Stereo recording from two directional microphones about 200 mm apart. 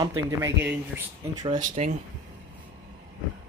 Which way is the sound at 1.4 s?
40° right (ahead or behind).